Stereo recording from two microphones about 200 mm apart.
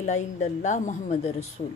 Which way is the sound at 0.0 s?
35° left (ahead or behind).